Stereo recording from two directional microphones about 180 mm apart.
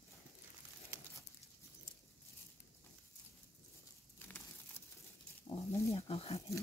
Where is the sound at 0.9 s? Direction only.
10° right (ahead or behind).